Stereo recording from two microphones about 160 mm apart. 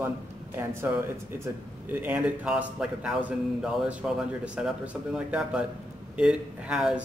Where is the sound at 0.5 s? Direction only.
15° right (ahead or behind).